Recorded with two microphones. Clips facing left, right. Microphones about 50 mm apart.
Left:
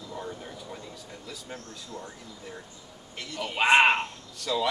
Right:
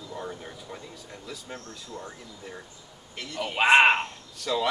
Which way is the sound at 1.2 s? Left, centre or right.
Centre.